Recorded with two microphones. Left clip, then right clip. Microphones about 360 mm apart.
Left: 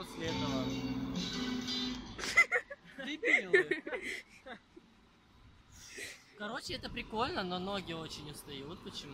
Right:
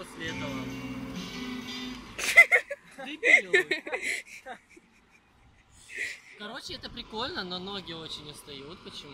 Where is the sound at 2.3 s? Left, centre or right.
Centre.